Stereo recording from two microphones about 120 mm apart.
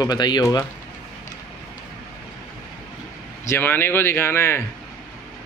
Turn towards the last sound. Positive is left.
turn(degrees=20)  # may be behind; listen again after turning